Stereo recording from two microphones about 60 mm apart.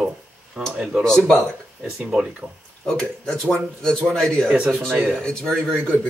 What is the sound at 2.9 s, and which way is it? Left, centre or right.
A man's voice, centre.